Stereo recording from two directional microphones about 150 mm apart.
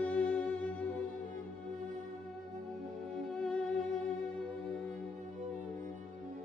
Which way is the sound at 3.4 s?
5° left (ahead or behind).